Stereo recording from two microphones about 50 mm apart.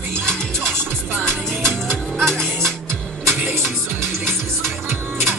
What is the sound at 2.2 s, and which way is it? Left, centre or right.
Music, centre.